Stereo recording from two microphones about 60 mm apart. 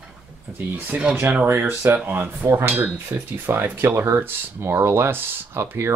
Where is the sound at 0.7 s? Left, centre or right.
Right.